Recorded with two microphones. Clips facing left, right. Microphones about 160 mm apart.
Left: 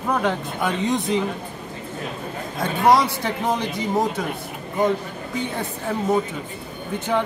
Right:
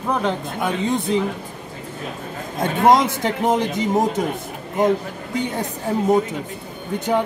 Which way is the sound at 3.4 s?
20° right (ahead or behind).